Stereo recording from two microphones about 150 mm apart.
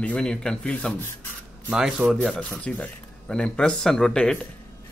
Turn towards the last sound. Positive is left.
turn(degrees=5)  # may be behind; listen again after turning